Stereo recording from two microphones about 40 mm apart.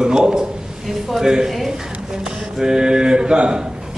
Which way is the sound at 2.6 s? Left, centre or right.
Centre.